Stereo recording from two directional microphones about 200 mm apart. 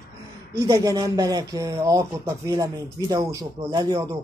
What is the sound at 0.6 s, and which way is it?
Speech, 15° right (ahead or behind).